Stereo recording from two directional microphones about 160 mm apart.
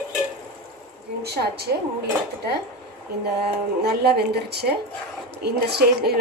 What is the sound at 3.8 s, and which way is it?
Speech, 90° right.